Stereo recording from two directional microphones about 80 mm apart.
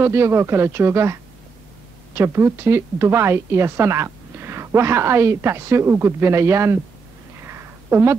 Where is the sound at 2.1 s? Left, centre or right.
Right.